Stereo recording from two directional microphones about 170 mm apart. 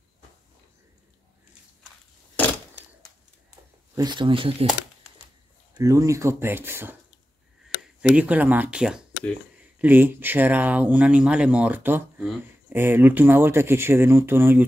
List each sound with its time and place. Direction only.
3.9 s speech: 25° right (ahead or behind)
5.8 s speech: 20° right (ahead or behind)
8.0 s speech: 5° right (ahead or behind)